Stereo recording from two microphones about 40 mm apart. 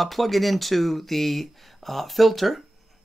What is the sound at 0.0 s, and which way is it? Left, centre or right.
Speech, centre.